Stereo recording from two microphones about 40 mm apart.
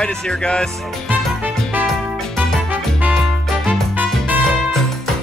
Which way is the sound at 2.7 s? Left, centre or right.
Right.